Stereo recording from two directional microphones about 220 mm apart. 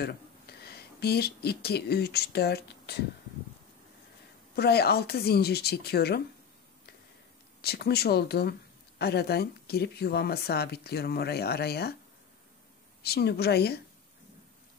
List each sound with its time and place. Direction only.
0.0 s speech: 45° left (ahead or behind)
4.6 s speech: 45° left (ahead or behind)
7.6 s speech: 45° left (ahead or behind)
13.0 s speech: 45° left (ahead or behind)